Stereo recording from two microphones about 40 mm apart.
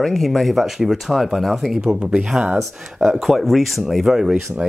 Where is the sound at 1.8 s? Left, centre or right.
Right.